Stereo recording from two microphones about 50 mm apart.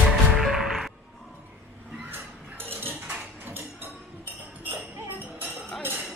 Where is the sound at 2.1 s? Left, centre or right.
Right.